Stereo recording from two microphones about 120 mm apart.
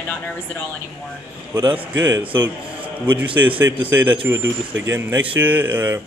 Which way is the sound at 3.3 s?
15° right (ahead or behind).